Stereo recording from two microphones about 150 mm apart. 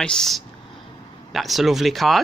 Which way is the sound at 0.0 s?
5° left (ahead or behind).